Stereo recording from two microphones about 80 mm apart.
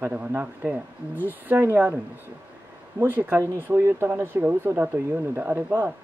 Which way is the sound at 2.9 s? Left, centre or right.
Right.